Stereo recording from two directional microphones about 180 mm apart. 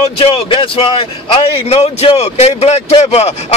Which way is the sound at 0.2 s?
30° left (ahead or behind).